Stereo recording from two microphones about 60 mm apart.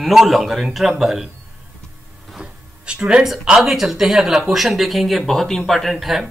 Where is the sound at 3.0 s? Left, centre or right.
Centre.